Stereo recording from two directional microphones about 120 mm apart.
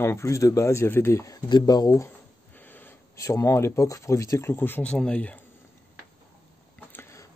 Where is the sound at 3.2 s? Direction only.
25° left (ahead or behind); by 5.4 s 10° left (ahead or behind).